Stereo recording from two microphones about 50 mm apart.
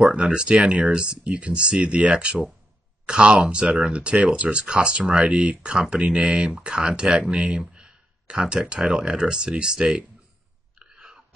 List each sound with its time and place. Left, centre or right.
0.0 s speech: centre
2.2 s speech: centre
10.8 s a sound: centre